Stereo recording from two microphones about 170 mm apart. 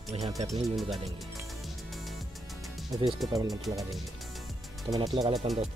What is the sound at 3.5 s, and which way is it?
Speech, centre (ahead or behind).